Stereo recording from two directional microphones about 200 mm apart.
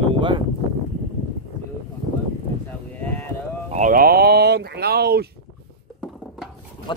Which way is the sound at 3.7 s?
40° right (ahead or behind).